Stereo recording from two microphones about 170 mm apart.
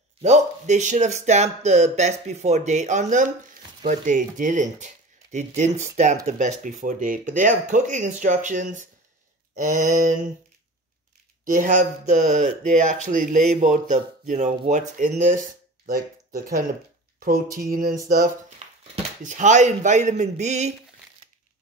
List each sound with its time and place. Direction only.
0.2 s speech: 45° right (ahead or behind)
11.4 s speech: 50° right (ahead or behind)
17.6 s music: 55° right (ahead or behind)
18.0 s speech: 55° right (ahead or behind)